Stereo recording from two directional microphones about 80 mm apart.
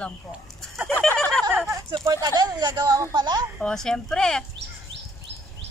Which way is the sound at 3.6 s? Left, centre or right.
Centre.